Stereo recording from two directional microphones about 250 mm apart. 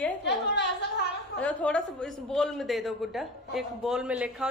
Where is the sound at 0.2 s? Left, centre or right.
Left.